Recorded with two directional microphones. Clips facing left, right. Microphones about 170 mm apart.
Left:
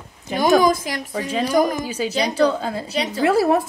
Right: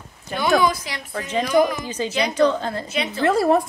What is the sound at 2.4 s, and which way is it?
Speech, 10° left (ahead or behind).